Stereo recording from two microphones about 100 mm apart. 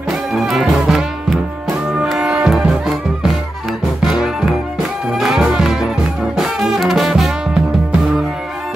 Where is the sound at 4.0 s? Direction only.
5° right (ahead or behind).